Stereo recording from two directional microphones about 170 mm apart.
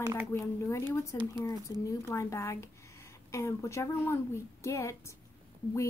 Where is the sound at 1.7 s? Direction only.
20° left (ahead or behind).